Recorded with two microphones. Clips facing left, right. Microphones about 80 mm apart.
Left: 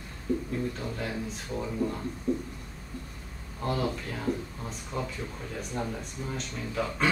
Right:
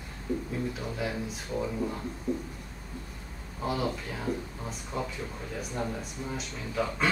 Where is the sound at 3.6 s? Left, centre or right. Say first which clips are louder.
Left 1 dB; centre.